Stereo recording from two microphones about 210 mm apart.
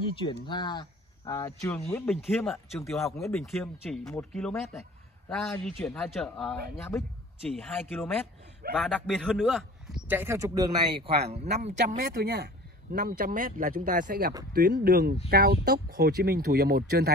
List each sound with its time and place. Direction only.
0.0 s a man's voice: 25° left (ahead or behind); by 11.0 s 20° right (ahead or behind)
11.6 s speech: 35° right (ahead or behind)